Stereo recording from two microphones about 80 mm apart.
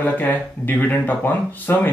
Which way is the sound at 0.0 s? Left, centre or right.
Left.